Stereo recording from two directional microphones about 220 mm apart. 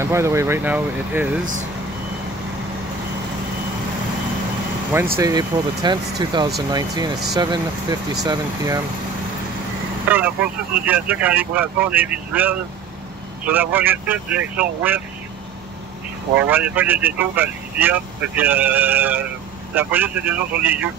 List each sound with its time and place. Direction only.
0.0 s speech: 10° right (ahead or behind)
5.1 s speech: 15° right (ahead or behind)
10.0 s speech: 5° right (ahead or behind)
16.3 s speech: 10° right (ahead or behind)